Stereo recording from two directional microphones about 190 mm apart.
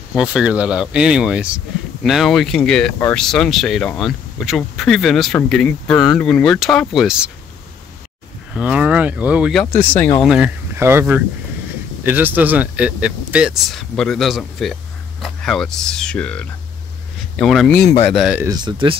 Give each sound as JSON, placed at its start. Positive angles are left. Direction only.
{"t": 0.1, "sound": "speech", "side_deg": -5}
{"t": 8.5, "sound": "speech", "side_deg": -5}
{"t": 10.2, "sound": "speech", "side_deg": -5}
{"t": 18.1, "sound": "speech", "side_deg": -5}
{"t": 18.4, "sound": "speech", "side_deg": -20}